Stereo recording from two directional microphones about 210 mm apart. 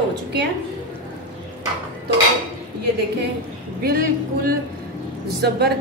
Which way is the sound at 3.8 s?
45° right (ahead or behind).